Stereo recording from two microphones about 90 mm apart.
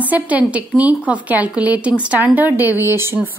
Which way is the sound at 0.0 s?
15° right (ahead or behind).